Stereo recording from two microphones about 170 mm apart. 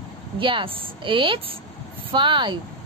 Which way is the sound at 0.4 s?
30° right (ahead or behind).